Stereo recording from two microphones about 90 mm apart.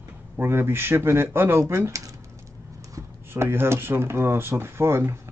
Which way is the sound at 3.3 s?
25° right (ahead or behind).